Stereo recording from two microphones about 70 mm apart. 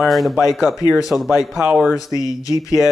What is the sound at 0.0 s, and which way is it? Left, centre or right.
Speech, centre.